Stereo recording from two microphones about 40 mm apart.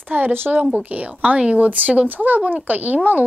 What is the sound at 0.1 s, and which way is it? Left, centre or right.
Speech, right.